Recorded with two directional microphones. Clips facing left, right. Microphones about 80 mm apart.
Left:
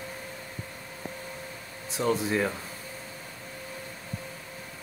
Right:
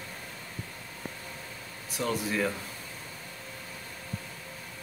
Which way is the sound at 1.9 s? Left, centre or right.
Left.